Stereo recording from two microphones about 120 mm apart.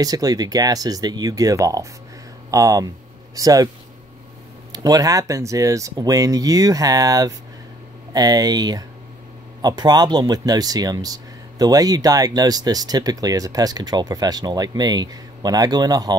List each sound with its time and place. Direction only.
0.0 s speech: 30° right (ahead or behind)
4.7 s speech: 30° right (ahead or behind)